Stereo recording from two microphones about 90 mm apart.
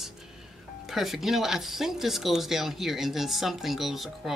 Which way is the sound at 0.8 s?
5° right (ahead or behind).